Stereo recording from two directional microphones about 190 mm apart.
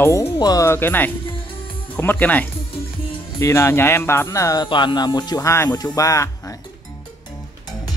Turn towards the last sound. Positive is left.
turn(degrees=15)  # may be behind; listen again after turning